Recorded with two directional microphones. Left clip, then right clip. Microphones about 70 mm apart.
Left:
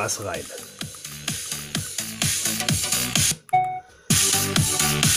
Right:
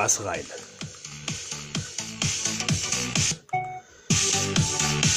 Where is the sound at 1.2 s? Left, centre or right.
Left.